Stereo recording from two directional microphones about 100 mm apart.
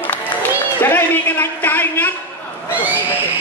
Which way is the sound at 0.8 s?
20° left (ahead or behind).